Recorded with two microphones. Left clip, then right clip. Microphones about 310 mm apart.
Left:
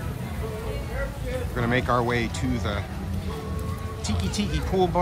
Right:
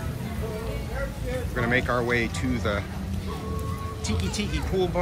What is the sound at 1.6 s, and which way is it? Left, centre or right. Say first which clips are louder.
Speech: left 1 dB; centre.